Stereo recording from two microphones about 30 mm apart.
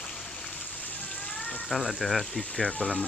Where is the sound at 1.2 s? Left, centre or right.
Left.